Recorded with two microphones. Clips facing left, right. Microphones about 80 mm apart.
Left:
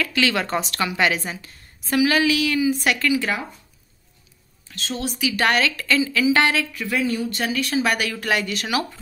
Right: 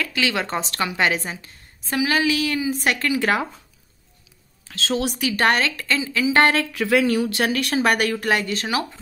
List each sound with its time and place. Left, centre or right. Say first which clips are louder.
0.0 s a woman's voice: left 2 dB; centre; by 3.3 s right
4.6 s a woman's voice: right 5 dB; right
5.2 s a woman's voice: left 1 dB; right
6.4 s a woman's voice: right 3 dB; right
6.7 s speech: right 5 dB; right
8.1 s a woman's voice: right 2 dB; right